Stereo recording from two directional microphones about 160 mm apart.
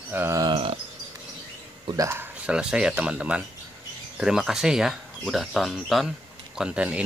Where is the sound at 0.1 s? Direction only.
15° right (ahead or behind).